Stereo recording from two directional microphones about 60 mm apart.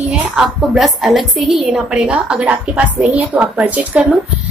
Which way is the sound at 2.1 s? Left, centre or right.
Right.